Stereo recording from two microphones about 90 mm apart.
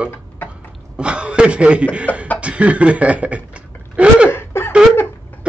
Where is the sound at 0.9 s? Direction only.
10° right (ahead or behind).